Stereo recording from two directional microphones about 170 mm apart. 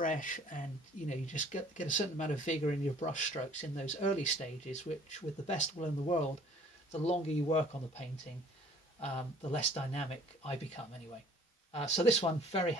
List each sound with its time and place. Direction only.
0.0 s speech: 50° left (ahead or behind)
9.0 s speech: 40° left (ahead or behind)
11.7 s speech: 40° left (ahead or behind)